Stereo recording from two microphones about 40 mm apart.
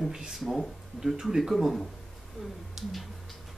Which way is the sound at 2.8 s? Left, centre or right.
Centre.